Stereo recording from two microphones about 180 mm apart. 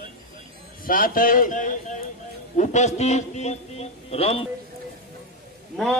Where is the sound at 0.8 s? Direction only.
50° left (ahead or behind); by 4.5 s 35° left (ahead or behind).